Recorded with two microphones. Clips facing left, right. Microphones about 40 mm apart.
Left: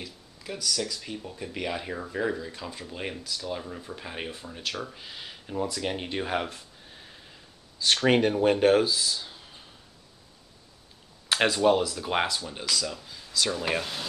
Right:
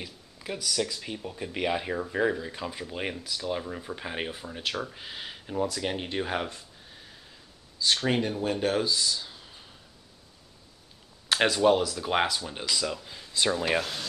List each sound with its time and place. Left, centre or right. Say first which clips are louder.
0.0 s speech: right 1 dB; centre
6.5 s a sound: left 1 dB; centre
7.8 s speech: left 4 dB; left
8.9 s a sound: even; centre
11.2 s speech: even; centre; by 13.6 s right
13.7 s speech: right 1 dB; centre